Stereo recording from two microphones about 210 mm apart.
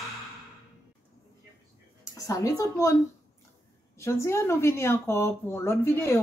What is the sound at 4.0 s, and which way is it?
Speech, 15° left (ahead or behind).